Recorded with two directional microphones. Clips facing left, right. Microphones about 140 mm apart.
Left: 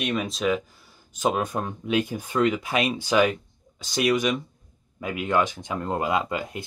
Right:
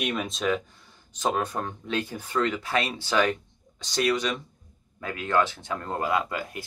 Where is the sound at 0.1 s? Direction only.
Centre (ahead or behind).